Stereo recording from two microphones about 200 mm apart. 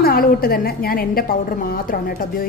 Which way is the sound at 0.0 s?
50° left (ahead or behind).